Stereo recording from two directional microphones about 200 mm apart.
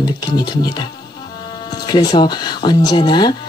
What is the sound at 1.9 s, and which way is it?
Speech, 20° left (ahead or behind).